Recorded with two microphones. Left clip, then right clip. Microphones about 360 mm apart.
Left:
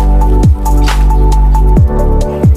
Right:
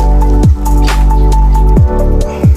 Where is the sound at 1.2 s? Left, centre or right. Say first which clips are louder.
Right 1 dB; centre.